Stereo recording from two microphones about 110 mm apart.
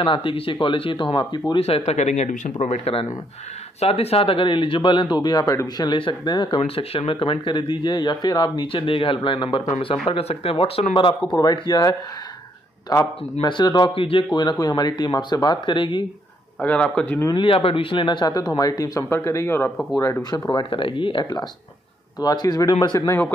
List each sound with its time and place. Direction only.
0.0 s speech: 50° left (ahead or behind)
1.6 s speech: 70° left (ahead or behind); by 2.5 s 90° left
2.6 s speech: 75° left (ahead or behind); by 6.6 s 45° left (ahead or behind)
6.6 s speech: 60° left (ahead or behind)
10.0 s speech: 65° left (ahead or behind)
11.3 s speech: 40° left (ahead or behind)
13.5 s speech: 45° left (ahead or behind)
16.6 s speech: 10° left (ahead or behind)
17.4 s speech: 55° left (ahead or behind); by 19.7 s 20° left (ahead or behind)
20.0 s speech: 30° left (ahead or behind)
20.7 s speech: 50° left (ahead or behind)
22.9 s speech: 25° left (ahead or behind)